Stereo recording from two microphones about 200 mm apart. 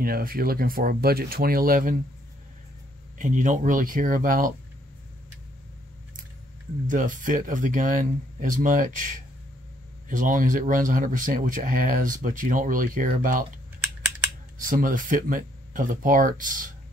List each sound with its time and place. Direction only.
0.0 s speech: 45° right (ahead or behind)
3.2 s speech: 40° right (ahead or behind)
6.9 s speech: 40° right (ahead or behind)
14.6 s speech: 45° right (ahead or behind)